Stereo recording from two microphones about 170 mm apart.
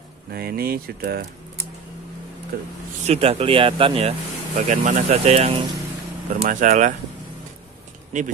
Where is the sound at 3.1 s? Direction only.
40° right (ahead or behind).